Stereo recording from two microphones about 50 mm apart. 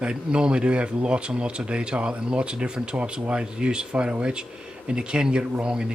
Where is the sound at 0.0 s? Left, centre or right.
Centre.